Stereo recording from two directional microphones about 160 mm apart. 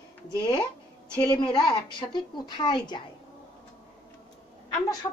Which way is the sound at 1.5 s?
30° left (ahead or behind).